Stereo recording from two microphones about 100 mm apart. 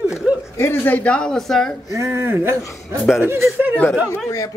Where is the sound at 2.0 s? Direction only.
25° right (ahead or behind).